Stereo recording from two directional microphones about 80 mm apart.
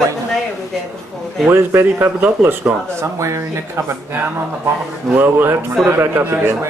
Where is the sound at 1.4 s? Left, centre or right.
Right.